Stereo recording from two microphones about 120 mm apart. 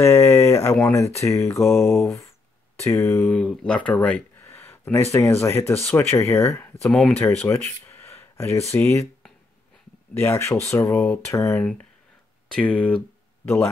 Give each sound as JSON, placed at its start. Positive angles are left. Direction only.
{"t": 0.0, "sound": "a sound", "side_deg": 20}
{"t": 0.9, "sound": "speech", "side_deg": 25}
{"t": 10.1, "sound": "speech", "side_deg": 20}
{"t": 12.4, "sound": "speech", "side_deg": 10}